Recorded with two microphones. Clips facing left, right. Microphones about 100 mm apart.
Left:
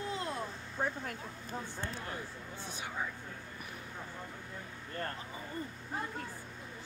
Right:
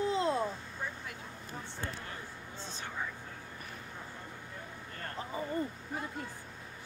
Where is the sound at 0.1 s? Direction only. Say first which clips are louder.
Right 7 dB; 25° right (ahead or behind).